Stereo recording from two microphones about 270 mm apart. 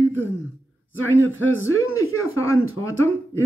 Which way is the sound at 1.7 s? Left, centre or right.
Left.